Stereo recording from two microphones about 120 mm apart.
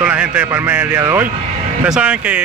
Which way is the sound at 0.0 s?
15° right (ahead or behind).